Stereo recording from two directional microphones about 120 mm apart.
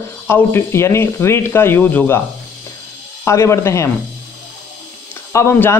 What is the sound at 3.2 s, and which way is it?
Speech, 25° left (ahead or behind).